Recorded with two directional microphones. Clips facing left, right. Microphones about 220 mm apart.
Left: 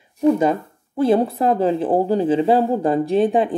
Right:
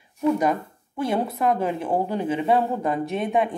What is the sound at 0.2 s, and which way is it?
A woman's voice, 30° left (ahead or behind).